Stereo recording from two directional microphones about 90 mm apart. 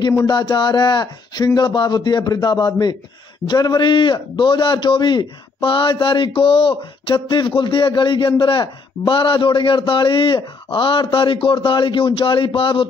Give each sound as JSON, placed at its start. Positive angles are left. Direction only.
{"t": 0.3, "sound": "speech", "side_deg": 55}
{"t": 3.8, "sound": "a man's voice", "side_deg": 65}